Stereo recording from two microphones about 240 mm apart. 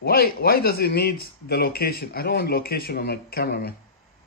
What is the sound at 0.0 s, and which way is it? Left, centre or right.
A man's voice, left.